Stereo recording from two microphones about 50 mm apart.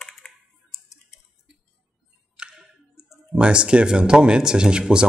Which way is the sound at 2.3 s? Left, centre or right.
Centre.